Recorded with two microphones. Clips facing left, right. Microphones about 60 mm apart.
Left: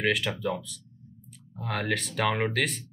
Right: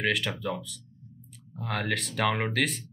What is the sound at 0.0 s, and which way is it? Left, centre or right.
Speech, centre.